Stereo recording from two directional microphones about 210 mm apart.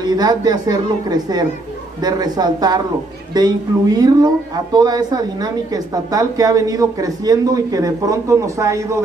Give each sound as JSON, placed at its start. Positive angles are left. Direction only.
{"t": 0.0, "sound": "a woman's voice", "side_deg": -20}